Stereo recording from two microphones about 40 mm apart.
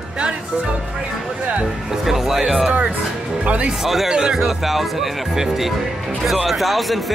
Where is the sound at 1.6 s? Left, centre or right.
Centre.